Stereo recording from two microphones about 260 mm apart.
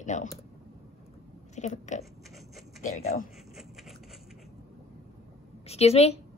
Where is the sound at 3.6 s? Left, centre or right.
Centre.